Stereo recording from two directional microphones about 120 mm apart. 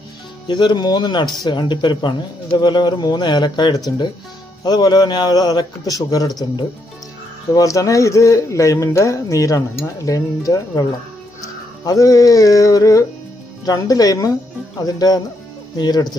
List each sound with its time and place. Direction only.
0.5 s speech: 40° left (ahead or behind)
7.5 s a man's voice: 30° left (ahead or behind)
11.4 s music: 30° left (ahead or behind)
13.7 s speech: 30° left (ahead or behind)